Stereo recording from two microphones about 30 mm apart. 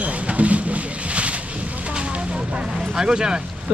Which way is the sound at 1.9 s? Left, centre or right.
Right.